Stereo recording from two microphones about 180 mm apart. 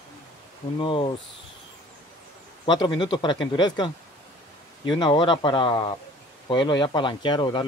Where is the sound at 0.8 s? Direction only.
25° left (ahead or behind).